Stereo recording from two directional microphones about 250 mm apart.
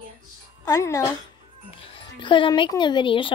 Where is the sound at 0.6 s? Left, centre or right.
Centre.